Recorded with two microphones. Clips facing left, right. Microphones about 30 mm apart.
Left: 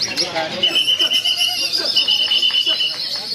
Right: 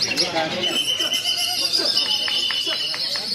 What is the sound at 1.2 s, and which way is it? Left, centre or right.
Neigh, left.